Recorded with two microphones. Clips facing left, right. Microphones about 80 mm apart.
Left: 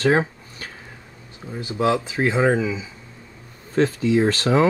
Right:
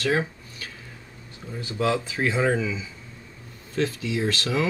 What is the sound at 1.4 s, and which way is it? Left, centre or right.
Speech, left.